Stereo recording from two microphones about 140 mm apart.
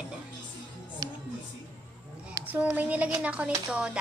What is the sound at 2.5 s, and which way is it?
A woman's voice, 10° right (ahead or behind).